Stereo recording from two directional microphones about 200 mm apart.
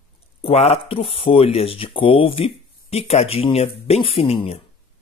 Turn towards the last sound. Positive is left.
turn(degrees=30)  # may be behind; listen again after turning